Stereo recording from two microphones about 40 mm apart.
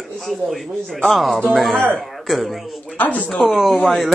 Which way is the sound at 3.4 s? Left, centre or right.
Centre.